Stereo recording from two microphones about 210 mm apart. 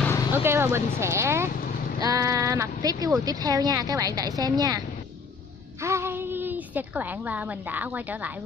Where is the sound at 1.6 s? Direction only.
40° left (ahead or behind).